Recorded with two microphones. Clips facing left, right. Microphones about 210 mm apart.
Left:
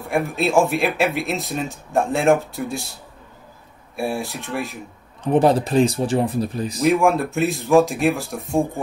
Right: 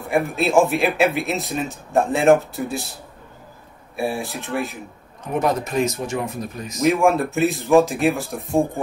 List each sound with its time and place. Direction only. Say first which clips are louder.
0.1 s speech: right 1 dB; centre (ahead or behind)
5.2 s speech: left 5 dB; 30° left (ahead or behind)
6.8 s speech: even; centre (ahead or behind)